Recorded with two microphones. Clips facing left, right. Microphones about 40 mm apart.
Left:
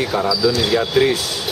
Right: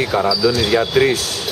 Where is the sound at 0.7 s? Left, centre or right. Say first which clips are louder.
Right 2 dB; centre.